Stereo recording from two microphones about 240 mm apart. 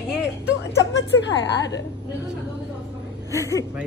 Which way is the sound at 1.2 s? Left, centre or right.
Left.